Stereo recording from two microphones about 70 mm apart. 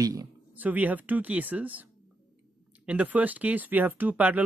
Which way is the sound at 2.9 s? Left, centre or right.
Right.